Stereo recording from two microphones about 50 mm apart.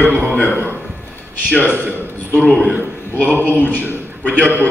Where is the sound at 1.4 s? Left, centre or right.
Left.